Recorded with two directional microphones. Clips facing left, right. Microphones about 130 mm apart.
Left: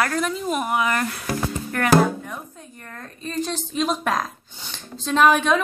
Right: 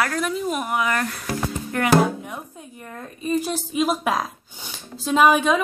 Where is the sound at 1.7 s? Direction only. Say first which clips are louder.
Even; 15° right (ahead or behind).